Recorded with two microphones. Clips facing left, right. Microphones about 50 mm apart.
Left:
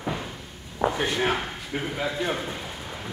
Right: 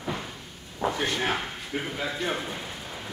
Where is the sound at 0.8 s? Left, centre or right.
Centre.